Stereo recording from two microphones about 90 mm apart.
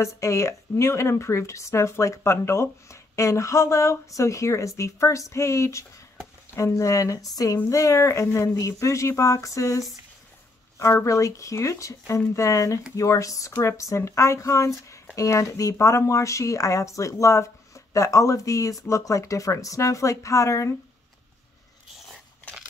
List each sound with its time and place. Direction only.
0.0 s a woman's voice: 35° left (ahead or behind)
11.1 s a woman's voice: 35° left (ahead or behind)